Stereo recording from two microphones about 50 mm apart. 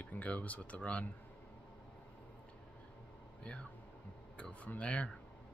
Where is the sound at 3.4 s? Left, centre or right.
Left.